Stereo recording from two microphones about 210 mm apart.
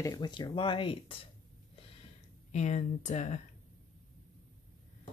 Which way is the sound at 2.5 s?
35° left (ahead or behind).